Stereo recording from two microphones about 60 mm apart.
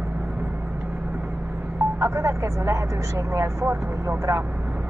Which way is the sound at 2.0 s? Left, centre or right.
Right.